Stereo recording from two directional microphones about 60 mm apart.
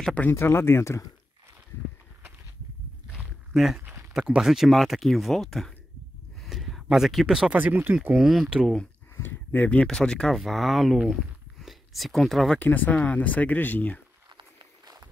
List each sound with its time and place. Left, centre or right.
0.3 s speech: left
3.5 s speech: centre
6.4 s a sound: centre
6.9 s speech: centre
7.5 s speech: right
8.1 s speech: centre
9.1 s a sound: left
9.7 s speech: centre
10.3 s speech: centre
11.6 s a sound: centre
12.5 s speech: left